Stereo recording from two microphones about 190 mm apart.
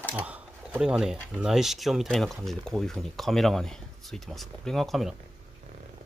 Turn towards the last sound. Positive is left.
turn(degrees=0)  # may be behind; listen again after turning